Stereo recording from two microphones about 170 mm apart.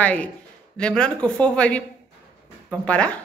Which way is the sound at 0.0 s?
5° left (ahead or behind).